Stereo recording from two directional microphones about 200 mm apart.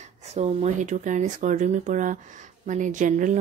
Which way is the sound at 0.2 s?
35° right (ahead or behind).